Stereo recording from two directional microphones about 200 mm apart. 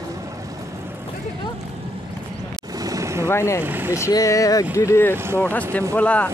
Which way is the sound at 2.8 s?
15° right (ahead or behind).